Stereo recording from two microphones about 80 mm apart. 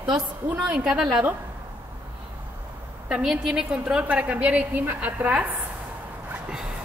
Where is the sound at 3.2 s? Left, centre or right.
Centre.